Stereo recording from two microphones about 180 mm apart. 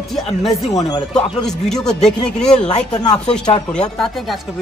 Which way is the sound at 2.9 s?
20° left (ahead or behind).